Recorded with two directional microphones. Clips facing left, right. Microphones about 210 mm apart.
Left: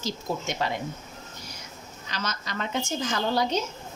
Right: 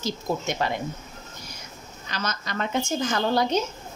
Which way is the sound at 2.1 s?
50° right (ahead or behind).